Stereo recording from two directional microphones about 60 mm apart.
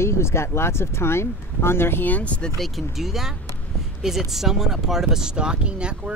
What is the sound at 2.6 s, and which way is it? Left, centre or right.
Speech, centre.